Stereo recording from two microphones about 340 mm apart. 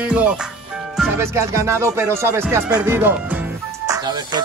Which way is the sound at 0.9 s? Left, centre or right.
Centre.